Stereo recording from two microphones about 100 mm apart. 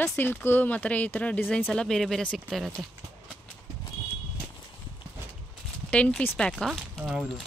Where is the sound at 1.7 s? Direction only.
5° left (ahead or behind).